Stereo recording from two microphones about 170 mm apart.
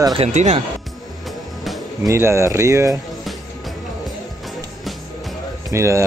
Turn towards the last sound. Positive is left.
turn(degrees=-15)  # may be behind; listen again after turning